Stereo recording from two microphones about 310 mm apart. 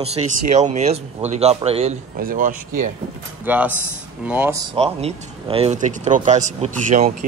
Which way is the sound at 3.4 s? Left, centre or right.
Centre.